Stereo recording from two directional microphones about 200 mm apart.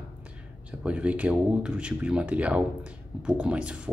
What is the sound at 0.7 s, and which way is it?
Speech, 5° right (ahead or behind).